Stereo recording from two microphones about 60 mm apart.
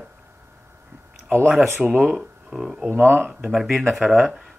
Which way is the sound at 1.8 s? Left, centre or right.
Centre.